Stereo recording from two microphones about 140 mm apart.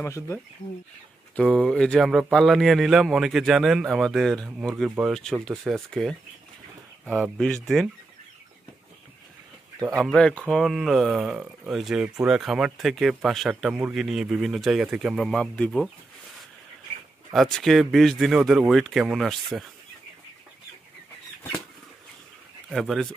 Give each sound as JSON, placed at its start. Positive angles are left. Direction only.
{"t": 0.0, "sound": "speech", "side_deg": 20}
{"t": 1.6, "sound": "speech", "side_deg": 5}
{"t": 10.1, "sound": "speech", "side_deg": 5}
{"t": 17.3, "sound": "speech", "side_deg": 0}
{"t": 22.7, "sound": "speech", "side_deg": 0}